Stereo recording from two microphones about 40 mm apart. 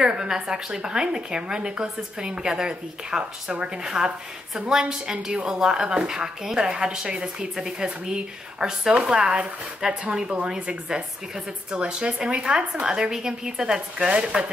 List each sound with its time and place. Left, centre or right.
0.0 s a woman's voice: centre